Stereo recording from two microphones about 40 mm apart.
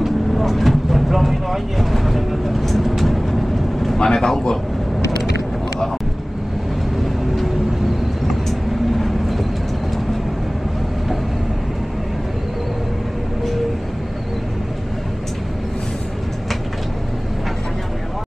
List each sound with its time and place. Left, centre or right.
0.0 s vehicle: centre
4.0 s a man's voice: centre
8.5 s vehicle: centre